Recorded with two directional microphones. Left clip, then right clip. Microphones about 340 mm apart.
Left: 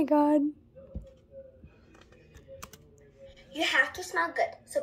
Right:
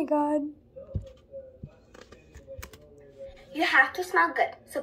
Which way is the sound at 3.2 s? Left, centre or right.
Centre.